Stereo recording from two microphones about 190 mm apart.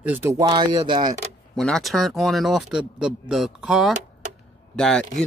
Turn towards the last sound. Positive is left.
turn(degrees=5)  # may be behind; listen again after turning